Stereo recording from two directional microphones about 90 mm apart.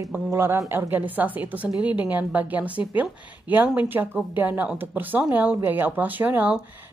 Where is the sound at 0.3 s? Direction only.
25° right (ahead or behind).